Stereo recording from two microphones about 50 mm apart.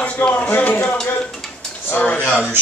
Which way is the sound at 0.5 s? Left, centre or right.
Left.